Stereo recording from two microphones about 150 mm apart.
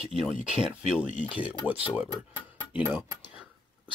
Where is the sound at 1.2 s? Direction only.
10° right (ahead or behind).